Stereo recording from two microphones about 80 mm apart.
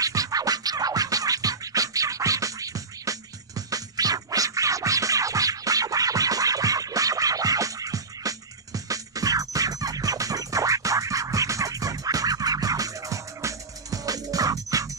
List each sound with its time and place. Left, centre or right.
0.0 s music: right